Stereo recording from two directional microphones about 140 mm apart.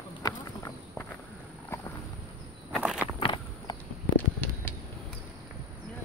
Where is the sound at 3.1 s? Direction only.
35° left (ahead or behind).